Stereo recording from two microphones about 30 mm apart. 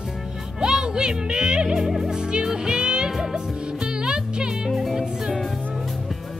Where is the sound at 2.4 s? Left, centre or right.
Right.